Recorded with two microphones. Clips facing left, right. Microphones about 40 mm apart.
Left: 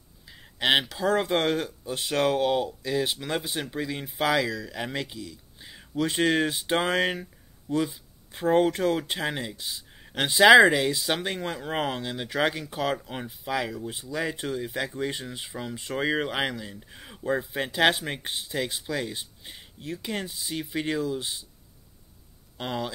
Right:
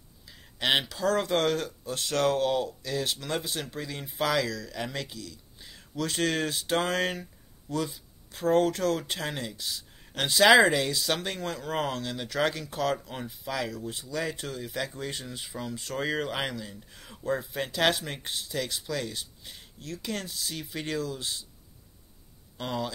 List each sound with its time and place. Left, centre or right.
0.3 s a sound: centre
0.8 s speech: left
22.6 s speech: left